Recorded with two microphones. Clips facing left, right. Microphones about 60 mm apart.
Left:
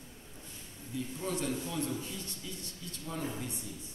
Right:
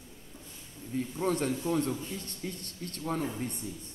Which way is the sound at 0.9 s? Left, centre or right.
Right.